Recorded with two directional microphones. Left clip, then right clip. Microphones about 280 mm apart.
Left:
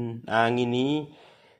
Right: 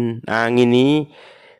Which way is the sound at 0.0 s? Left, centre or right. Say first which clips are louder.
Right 5 dB; right.